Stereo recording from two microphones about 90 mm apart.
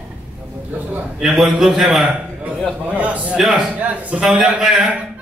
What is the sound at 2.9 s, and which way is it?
A man's voice, 15° right (ahead or behind).